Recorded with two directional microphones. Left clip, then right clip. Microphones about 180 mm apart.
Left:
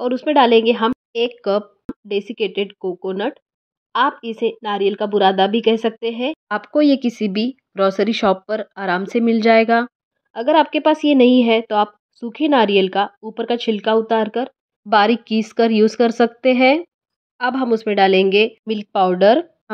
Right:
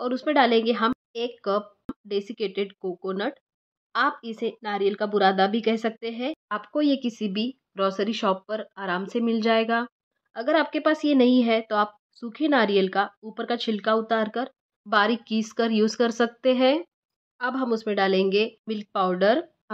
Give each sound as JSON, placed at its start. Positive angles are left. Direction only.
{"t": 0.0, "sound": "speech", "side_deg": 15}
{"t": 6.5, "sound": "speech", "side_deg": 25}
{"t": 14.9, "sound": "speech", "side_deg": 25}